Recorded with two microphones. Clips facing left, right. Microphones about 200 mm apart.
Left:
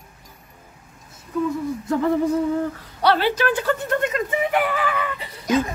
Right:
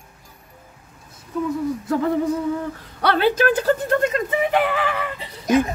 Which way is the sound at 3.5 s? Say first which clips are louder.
Right 3 dB; 35° right (ahead or behind).